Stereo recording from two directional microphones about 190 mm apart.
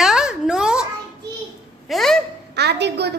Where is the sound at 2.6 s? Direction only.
60° right (ahead or behind).